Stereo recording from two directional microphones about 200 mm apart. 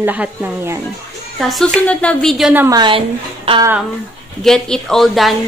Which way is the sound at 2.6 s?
20° right (ahead or behind).